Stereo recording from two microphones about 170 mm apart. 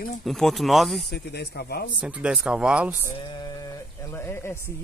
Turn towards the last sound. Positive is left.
turn(degrees=15)  # may be behind; listen again after turning